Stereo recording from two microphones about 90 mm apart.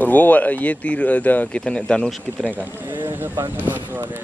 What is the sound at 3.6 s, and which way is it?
Speech, 20° right (ahead or behind).